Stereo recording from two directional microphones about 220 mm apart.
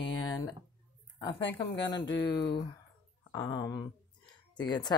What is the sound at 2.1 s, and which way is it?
A woman's voice, 20° left (ahead or behind).